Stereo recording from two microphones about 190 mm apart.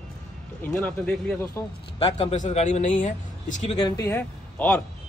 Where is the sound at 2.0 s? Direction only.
30° left (ahead or behind).